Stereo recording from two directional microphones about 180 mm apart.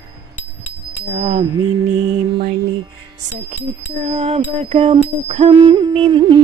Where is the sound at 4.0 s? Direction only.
35° right (ahead or behind).